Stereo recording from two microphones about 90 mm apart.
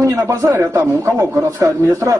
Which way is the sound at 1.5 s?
30° right (ahead or behind).